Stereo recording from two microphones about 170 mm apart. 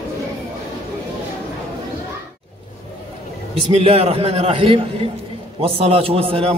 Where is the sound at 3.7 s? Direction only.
35° right (ahead or behind).